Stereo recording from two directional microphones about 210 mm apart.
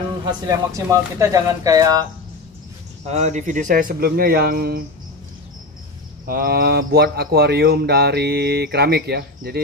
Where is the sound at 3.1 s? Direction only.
35° right (ahead or behind).